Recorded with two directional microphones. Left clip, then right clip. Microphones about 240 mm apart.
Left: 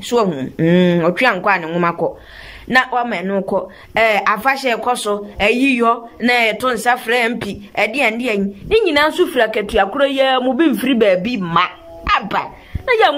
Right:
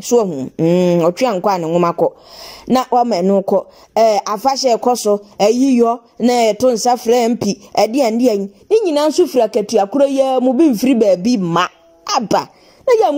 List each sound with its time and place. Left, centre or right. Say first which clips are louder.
0.0 s a woman's voice: right 2 dB; right